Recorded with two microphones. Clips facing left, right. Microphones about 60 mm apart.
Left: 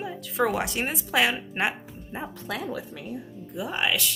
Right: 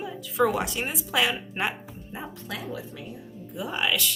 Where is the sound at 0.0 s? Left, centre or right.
Left.